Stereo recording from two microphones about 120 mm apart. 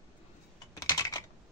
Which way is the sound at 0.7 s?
30° left (ahead or behind).